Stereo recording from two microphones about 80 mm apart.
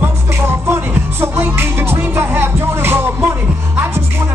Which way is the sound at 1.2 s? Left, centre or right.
Right.